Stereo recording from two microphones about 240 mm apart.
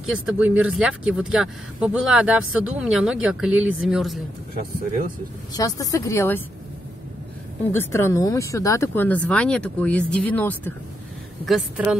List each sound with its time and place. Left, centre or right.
0.0 s speech: centre
5.5 s speech: centre
7.7 s speech: centre
11.4 s speech: centre